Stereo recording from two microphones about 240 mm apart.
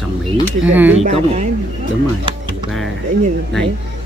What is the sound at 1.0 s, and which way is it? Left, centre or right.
Speech, right.